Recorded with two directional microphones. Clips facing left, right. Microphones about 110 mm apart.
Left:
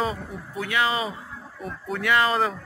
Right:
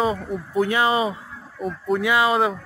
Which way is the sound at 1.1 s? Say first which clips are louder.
Right 2 dB; centre (ahead or behind).